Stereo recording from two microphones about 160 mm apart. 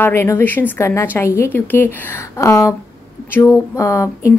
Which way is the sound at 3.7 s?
20° left (ahead or behind).